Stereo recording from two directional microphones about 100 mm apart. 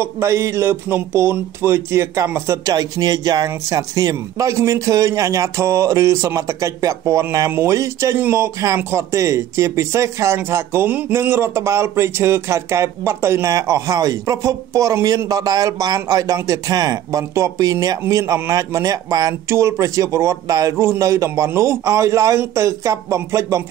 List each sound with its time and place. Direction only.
0.0 s speech: 30° right (ahead or behind)
2.7 s speech: 40° right (ahead or behind)